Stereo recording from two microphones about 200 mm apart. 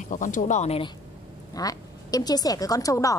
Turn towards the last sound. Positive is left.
turn(degrees=15)  # may be behind; listen again after turning